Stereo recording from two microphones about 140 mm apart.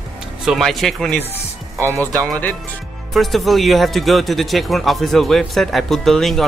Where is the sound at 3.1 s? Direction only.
Centre (ahead or behind).